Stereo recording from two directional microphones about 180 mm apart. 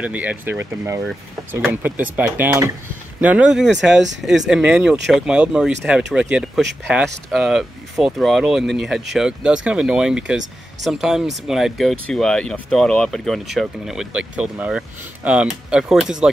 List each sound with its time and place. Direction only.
0.0 s speech: 10° right (ahead or behind)
3.9 s speech: 80° right
4.5 s speech: 5° right (ahead or behind)